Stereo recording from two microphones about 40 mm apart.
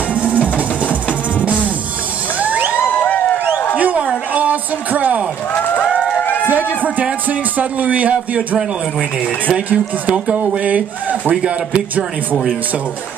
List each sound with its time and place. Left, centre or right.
0.1 s music: right
2.4 s music: right
3.3 s a sound: left
3.7 s a sound: right
6.5 s a sound: right
7.2 s speech: right
10.1 s speech: right
10.6 s speech: right
11.2 s speech: right